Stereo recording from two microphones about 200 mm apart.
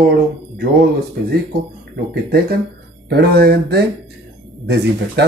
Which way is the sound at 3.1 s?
50° right (ahead or behind).